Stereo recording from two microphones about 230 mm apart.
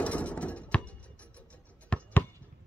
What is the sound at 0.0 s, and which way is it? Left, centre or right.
Music, centre.